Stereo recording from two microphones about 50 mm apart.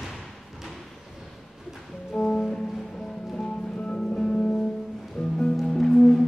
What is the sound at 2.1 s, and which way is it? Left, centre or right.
Music, centre.